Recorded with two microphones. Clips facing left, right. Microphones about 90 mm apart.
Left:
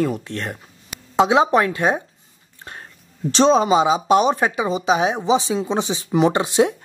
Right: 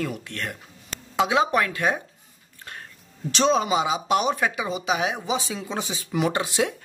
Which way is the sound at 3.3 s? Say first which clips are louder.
Left 6 dB; 35° left (ahead or behind).